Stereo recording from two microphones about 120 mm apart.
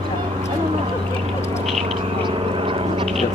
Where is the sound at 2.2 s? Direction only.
45° right (ahead or behind).